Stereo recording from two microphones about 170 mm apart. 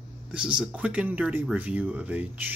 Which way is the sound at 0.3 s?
5° right (ahead or behind).